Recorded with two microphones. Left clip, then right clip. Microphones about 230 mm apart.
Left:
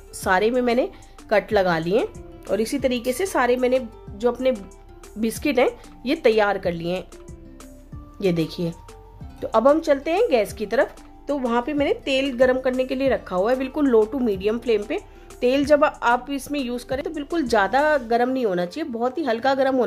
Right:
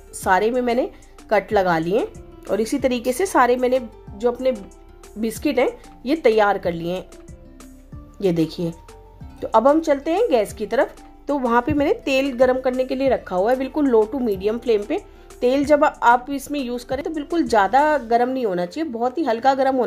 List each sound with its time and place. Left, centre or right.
0.2 s speech: centre
8.2 s speech: centre